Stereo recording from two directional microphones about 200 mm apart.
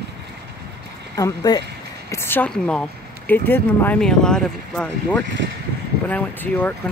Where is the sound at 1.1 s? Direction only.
20° left (ahead or behind).